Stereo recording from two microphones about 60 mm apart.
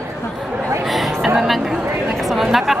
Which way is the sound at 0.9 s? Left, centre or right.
Centre.